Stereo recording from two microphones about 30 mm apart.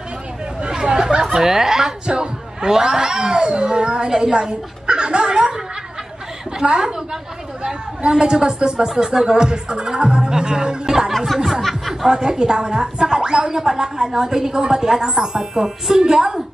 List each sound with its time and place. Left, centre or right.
0.6 s chatter: right
1.4 s speech: centre; by 5.5 s right
6.6 s speech: right
8.0 s speech: right
8.8 s speech: centre